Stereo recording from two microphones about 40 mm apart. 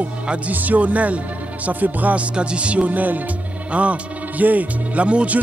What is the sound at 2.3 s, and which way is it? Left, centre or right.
Music, right.